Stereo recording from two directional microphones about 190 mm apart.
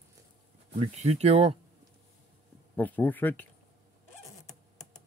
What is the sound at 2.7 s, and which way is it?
Speech, 10° left (ahead or behind).